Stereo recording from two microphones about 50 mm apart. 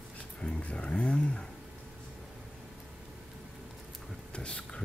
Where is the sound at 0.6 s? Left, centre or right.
Left.